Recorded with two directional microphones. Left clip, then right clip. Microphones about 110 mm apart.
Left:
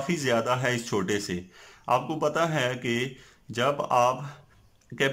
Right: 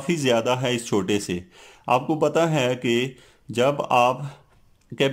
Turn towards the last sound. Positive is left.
turn(degrees=-50)  # may be behind; listen again after turning